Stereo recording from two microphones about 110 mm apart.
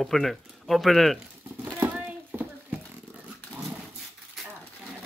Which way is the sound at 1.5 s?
15° right (ahead or behind).